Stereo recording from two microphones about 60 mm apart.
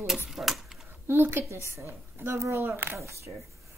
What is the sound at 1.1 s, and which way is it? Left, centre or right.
A woman's voice, right.